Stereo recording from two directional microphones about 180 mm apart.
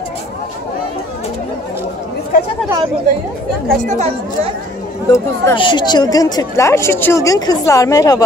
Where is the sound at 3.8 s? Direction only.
40° right (ahead or behind).